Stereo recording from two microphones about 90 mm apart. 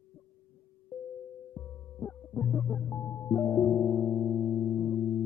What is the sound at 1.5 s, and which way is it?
Music, 20° left (ahead or behind).